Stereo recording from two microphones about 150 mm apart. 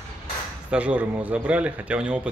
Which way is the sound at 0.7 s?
10° right (ahead or behind).